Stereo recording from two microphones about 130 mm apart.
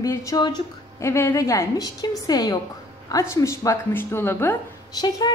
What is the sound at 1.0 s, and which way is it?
A woman's voice, 20° left (ahead or behind).